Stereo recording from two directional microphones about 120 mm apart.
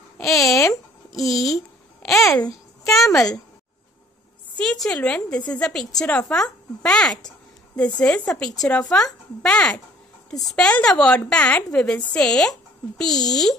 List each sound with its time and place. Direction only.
0.4 s a child's voice: 25° left (ahead or behind)
1.1 s a woman's voice: centre (ahead or behind)
4.6 s a woman's voice: 5° left (ahead or behind)